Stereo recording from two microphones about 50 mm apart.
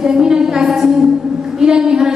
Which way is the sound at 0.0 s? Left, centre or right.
Centre.